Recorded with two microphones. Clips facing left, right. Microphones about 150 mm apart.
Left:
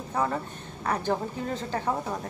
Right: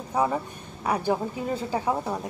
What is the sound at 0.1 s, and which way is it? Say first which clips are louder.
Speech: right 3 dB; 10° right (ahead or behind).